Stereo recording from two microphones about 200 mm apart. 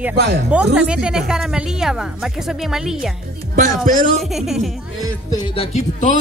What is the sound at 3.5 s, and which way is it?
Speech, 45° right (ahead or behind).